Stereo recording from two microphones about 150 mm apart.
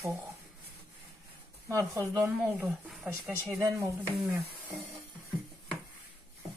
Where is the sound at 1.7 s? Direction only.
20° right (ahead or behind).